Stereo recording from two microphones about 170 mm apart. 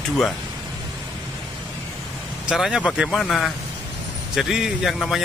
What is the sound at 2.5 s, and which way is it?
A man's voice, centre (ahead or behind).